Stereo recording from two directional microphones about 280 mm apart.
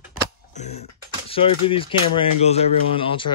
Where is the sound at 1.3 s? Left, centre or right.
Centre.